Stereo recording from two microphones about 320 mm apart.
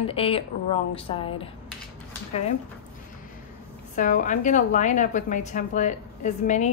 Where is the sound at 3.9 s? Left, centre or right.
Left.